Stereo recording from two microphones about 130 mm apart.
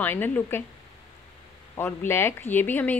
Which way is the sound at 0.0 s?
15° left (ahead or behind).